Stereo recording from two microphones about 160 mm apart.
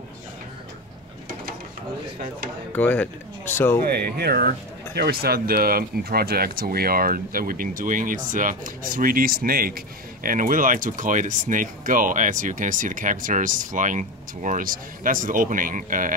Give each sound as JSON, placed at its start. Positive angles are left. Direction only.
{"t": 2.7, "sound": "speech", "side_deg": 10}
{"t": 3.9, "sound": "speech", "side_deg": -75}